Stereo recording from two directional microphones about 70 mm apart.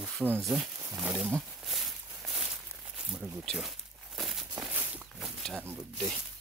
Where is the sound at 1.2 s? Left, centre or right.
Centre.